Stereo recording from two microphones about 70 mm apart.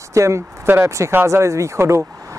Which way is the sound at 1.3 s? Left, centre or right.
Right.